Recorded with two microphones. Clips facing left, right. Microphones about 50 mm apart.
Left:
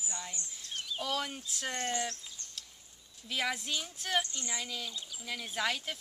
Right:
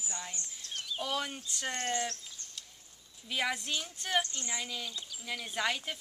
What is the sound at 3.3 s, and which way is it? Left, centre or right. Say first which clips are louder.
Speech: right 1 dB; centre.